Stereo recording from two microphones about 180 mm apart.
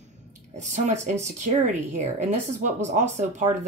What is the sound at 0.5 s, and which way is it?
Speech, 40° right (ahead or behind).